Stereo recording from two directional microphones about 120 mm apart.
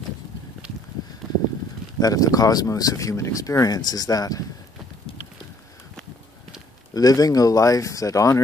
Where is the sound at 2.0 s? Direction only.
30° left (ahead or behind).